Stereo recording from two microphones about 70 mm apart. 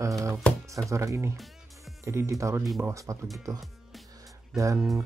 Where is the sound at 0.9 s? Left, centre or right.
Right.